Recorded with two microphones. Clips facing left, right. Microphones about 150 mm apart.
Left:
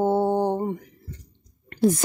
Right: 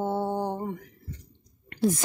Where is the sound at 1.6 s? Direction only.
40° left (ahead or behind).